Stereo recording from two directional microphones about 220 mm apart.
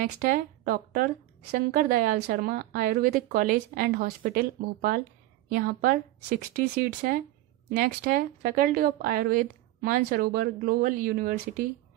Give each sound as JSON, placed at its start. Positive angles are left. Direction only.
{"t": 0.0, "sound": "a woman's voice", "side_deg": -40}